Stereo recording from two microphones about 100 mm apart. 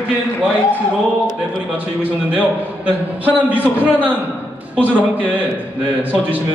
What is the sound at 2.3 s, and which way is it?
A man's voice, 15° right (ahead or behind).